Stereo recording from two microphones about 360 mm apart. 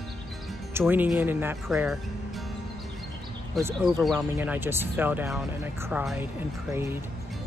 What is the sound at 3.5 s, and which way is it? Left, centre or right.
Speech, centre.